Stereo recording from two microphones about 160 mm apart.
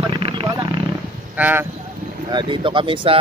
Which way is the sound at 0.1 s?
35° right (ahead or behind).